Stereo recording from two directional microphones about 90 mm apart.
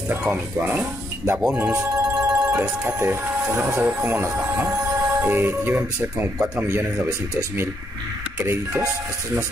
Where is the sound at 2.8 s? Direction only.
25° right (ahead or behind).